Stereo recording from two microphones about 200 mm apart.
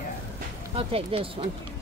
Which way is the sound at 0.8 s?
30° right (ahead or behind).